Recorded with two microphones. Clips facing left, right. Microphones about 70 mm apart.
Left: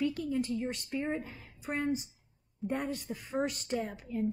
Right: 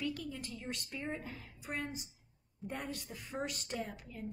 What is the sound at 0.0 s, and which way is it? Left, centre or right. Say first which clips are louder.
A woman's voice: left 8 dB; left.